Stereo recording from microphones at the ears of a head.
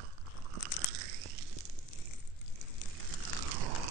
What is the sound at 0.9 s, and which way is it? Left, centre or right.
Biting, right.